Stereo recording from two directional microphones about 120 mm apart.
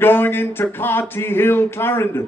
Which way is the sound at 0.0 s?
20° left (ahead or behind).